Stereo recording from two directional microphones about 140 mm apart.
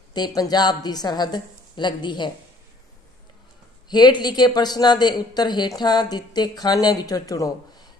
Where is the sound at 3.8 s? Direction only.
30° left (ahead or behind).